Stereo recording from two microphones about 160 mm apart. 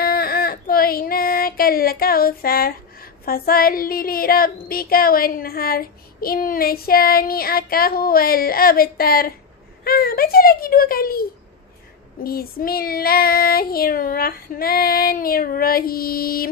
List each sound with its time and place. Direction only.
0.0 s child singing: 70° left (ahead or behind)